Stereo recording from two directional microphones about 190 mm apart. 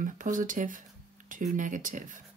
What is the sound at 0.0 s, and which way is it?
Speech, 45° right (ahead or behind).